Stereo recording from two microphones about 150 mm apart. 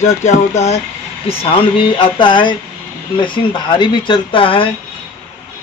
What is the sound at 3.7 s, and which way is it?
Speech, 30° left (ahead or behind).